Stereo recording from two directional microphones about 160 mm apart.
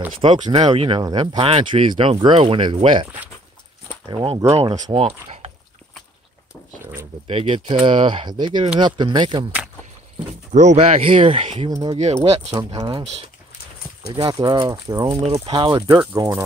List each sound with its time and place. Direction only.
0.2 s speech: 30° right (ahead or behind)
4.9 s speech: 40° right (ahead or behind)
6.8 s a sound: 15° right (ahead or behind)
7.2 s speech: 35° right (ahead or behind)
10.5 s speech: 45° right (ahead or behind)
11.7 s speech: 25° right (ahead or behind)
15.1 s speech: 35° right (ahead or behind)
16.0 s speech: 15° right (ahead or behind)